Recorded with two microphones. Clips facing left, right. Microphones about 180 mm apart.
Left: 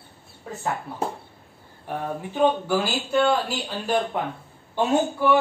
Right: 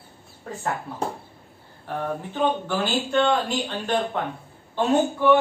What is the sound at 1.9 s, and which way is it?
Speech, 10° left (ahead or behind).